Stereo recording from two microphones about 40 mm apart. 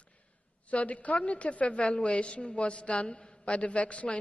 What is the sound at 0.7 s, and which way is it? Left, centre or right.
A woman's voice, left.